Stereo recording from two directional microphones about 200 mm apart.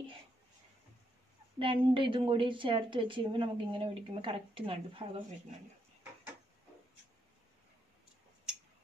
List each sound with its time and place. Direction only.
1.6 s a woman's voice: 25° right (ahead or behind)